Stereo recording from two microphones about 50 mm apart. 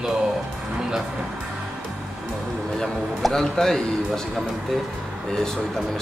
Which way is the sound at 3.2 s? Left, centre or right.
Centre.